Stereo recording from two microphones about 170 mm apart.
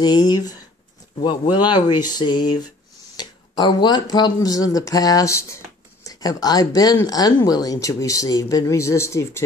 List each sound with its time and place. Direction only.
0.0 s speech: 25° left (ahead or behind)